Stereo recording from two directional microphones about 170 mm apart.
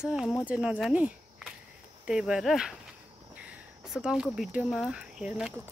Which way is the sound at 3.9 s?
5° right (ahead or behind).